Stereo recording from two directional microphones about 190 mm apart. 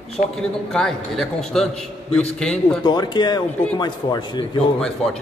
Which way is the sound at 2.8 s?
25° left (ahead or behind).